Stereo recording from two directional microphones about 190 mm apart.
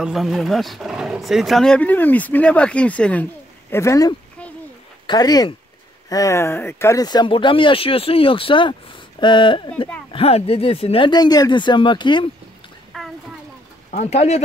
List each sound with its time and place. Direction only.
0.0 s speech: centre (ahead or behind); by 12.3 s 25° left (ahead or behind)
12.9 s a sound: centre (ahead or behind)
13.8 s speech: 35° left (ahead or behind)